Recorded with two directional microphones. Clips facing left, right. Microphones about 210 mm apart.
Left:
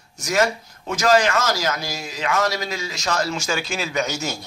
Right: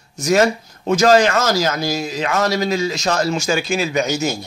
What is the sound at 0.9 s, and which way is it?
Speech, 35° right (ahead or behind).